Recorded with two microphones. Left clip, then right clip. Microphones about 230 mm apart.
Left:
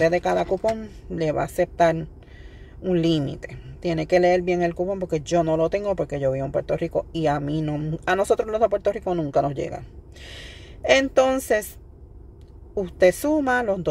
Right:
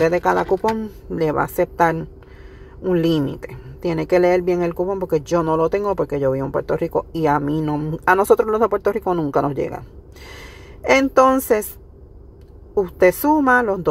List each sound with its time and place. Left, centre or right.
0.0 s a woman's voice: centre
10.9 s a woman's voice: centre
12.7 s a woman's voice: centre